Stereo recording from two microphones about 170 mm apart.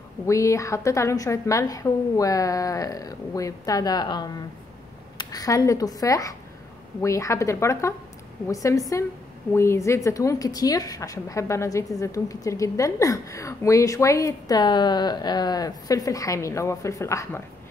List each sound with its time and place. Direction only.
0.3 s a woman's voice: 20° left (ahead or behind)